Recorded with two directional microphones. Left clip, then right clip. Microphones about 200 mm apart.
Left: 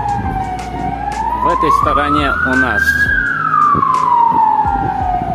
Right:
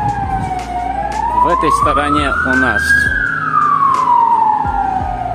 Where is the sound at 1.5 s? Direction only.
15° right (ahead or behind).